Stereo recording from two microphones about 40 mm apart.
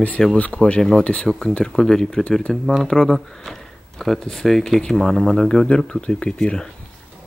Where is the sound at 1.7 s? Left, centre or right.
Centre.